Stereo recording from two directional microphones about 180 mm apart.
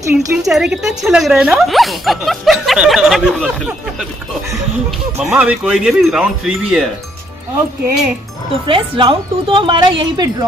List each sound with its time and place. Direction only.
0.1 s speech: 5° right (ahead or behind)
5.2 s speech: 5° right (ahead or behind)
8.6 s speech: 30° right (ahead or behind)